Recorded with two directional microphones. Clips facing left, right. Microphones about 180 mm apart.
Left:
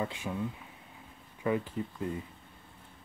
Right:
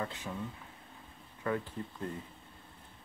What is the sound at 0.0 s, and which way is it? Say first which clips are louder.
Speech: left 4 dB; 10° left (ahead or behind).